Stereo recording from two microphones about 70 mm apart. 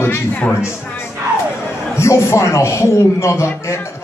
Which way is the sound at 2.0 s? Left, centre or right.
Left.